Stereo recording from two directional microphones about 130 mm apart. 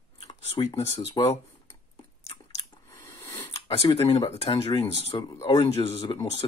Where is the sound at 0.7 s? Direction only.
50° left (ahead or behind).